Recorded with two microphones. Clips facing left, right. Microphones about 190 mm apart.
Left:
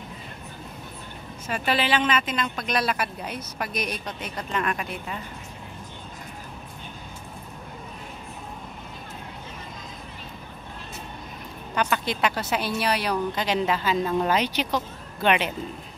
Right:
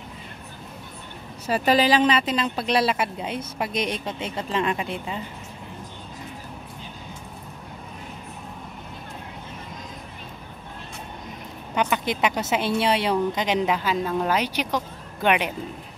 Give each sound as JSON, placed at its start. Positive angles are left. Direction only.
{"t": 1.5, "sound": "a woman's voice", "side_deg": -40}
{"t": 11.7, "sound": "a woman's voice", "side_deg": -20}